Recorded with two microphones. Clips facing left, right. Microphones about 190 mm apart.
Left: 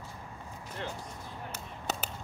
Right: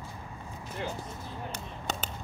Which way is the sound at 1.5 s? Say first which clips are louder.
Left 2 dB; 5° left (ahead or behind).